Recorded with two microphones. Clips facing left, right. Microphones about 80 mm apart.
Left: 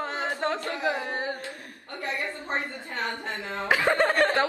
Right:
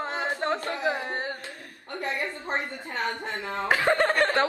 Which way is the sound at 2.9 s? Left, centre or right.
Right.